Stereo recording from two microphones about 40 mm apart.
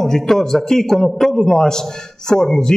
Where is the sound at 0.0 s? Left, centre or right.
Centre.